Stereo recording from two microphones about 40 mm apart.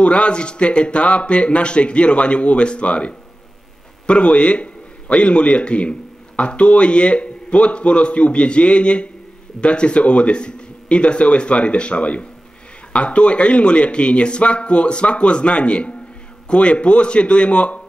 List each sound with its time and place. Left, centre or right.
0.0 s a man's voice: left